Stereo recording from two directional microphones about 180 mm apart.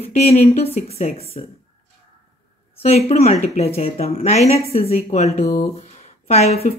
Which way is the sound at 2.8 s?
35° left (ahead or behind).